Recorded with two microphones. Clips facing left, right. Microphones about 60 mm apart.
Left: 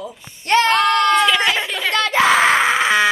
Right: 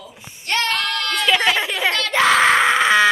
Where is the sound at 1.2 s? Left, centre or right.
Centre.